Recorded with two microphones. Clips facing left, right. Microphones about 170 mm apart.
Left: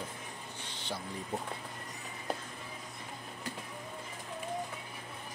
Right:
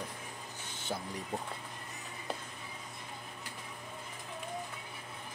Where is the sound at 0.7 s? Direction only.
45° right (ahead or behind).